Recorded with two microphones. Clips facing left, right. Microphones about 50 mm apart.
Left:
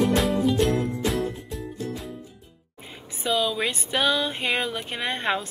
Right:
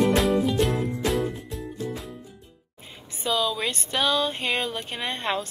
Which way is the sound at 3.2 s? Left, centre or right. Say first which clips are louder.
Left 1 dB; centre.